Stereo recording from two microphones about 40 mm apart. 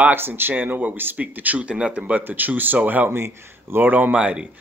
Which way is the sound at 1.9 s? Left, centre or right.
Right.